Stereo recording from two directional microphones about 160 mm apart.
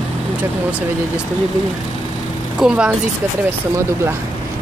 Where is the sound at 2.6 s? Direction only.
5° right (ahead or behind).